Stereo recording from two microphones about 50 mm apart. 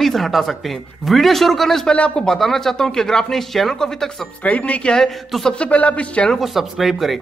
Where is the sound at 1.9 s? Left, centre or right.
Left.